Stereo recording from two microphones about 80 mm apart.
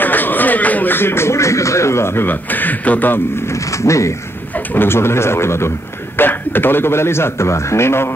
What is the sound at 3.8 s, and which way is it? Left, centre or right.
A man's voice, left.